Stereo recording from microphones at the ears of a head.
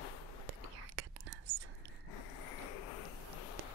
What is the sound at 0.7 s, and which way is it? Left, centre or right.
Whispering, right.